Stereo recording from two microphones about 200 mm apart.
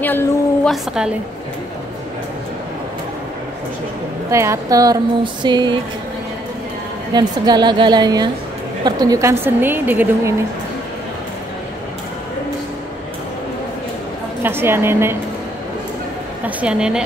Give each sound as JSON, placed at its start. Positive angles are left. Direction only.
{"t": 0.0, "sound": "a woman's voice", "side_deg": 10}
{"t": 4.3, "sound": "a woman's voice", "side_deg": -15}
{"t": 7.2, "sound": "a woman's voice", "side_deg": -20}
{"t": 14.4, "sound": "a woman's voice", "side_deg": -10}
{"t": 16.4, "sound": "a woman's voice", "side_deg": -5}